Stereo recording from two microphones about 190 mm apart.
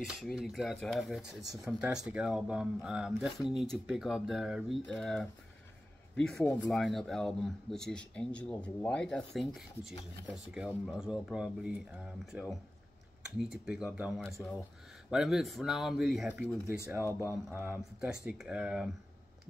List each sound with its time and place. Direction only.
0.0 s speech: centre (ahead or behind)
6.4 s speech: 15° left (ahead or behind)
6.7 s speech: centre (ahead or behind)